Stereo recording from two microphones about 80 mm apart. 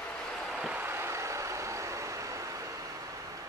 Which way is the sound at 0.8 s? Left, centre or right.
Right.